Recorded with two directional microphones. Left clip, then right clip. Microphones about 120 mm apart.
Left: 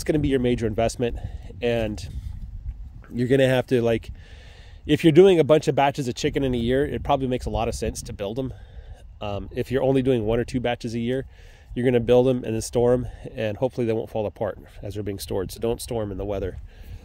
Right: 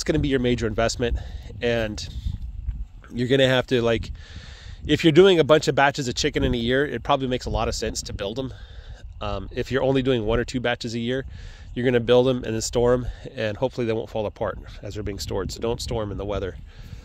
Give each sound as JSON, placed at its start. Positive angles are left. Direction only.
{"t": 0.0, "sound": "speech", "side_deg": 30}